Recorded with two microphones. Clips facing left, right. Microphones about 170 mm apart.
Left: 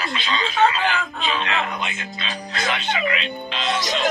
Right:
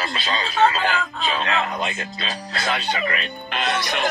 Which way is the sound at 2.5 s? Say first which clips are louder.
Even; 40° right (ahead or behind).